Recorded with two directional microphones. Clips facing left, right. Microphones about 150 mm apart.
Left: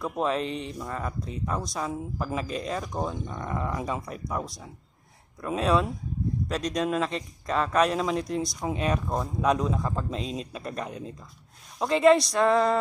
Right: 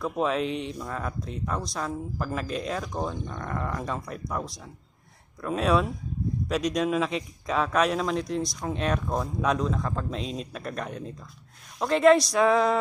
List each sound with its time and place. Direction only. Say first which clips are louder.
0.0 s speech: right 1 dB; centre (ahead or behind)